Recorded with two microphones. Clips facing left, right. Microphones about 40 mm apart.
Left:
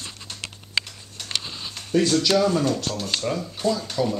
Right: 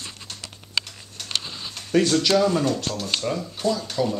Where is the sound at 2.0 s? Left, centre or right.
Right.